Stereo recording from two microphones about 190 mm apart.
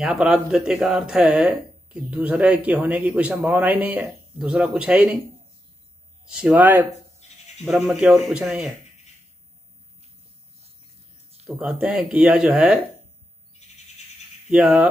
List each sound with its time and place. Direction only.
0.0 s speech: 5° right (ahead or behind)
6.2 s speech: 5° right (ahead or behind)
7.2 s bleat: 35° left (ahead or behind)
7.7 s speech: 5° right (ahead or behind)
11.4 s speech: 5° right (ahead or behind)
13.6 s owl: 35° left (ahead or behind)
14.5 s speech: 5° right (ahead or behind)